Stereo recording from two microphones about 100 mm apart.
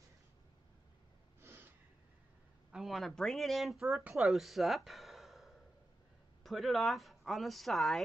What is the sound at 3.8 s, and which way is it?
Speech, 15° right (ahead or behind).